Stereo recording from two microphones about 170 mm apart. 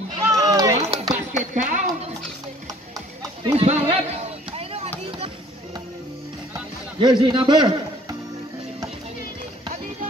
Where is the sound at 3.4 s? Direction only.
35° right (ahead or behind).